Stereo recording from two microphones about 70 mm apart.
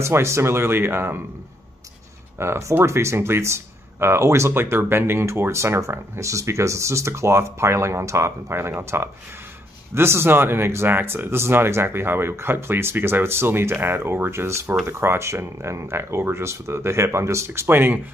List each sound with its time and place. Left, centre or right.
0.0 s speech: right
2.3 s speech: right
9.9 s speech: right